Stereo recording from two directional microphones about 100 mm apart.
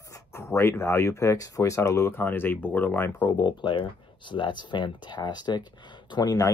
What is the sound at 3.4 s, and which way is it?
Speech, 50° left (ahead or behind).